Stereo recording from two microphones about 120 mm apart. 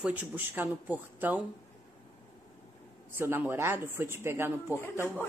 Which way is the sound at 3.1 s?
15° right (ahead or behind).